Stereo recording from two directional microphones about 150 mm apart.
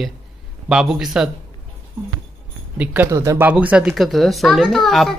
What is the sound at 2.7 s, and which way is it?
Speech, 15° right (ahead or behind).